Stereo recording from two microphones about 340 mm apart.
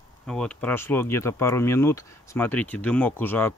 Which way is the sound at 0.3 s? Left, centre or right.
Centre.